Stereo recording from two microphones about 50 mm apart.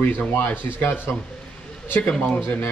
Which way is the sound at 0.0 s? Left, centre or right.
Left.